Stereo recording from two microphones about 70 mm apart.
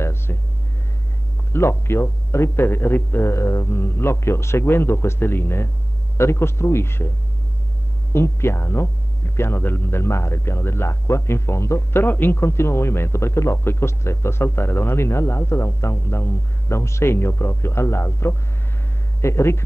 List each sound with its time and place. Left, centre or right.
0.0 s music: left
1.5 s speech: left
8.1 s speech: left